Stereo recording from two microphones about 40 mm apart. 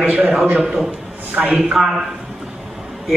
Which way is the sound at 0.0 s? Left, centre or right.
Right.